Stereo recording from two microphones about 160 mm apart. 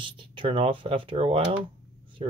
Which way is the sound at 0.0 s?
30° right (ahead or behind).